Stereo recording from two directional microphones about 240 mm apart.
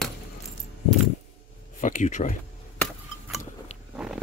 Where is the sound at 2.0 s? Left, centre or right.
Left.